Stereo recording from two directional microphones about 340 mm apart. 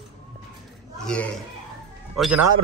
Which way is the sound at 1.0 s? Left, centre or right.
Centre.